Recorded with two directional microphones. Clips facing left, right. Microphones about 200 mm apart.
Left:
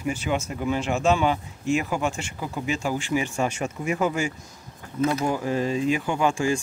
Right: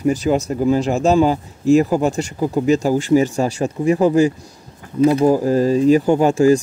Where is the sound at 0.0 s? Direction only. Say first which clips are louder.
Right 10 dB; 40° right (ahead or behind).